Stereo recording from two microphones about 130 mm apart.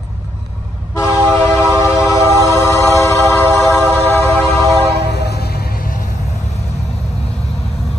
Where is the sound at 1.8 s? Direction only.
25° left (ahead or behind).